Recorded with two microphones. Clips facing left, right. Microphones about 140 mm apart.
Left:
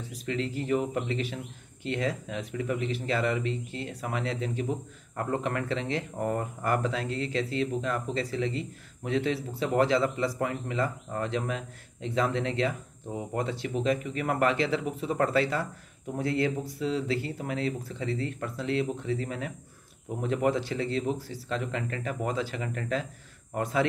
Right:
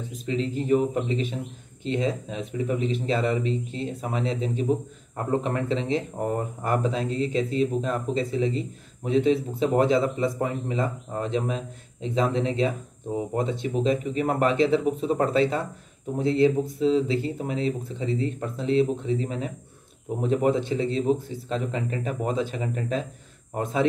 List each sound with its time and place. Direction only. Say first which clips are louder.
0.1 s speech: right 4 dB; 20° right (ahead or behind)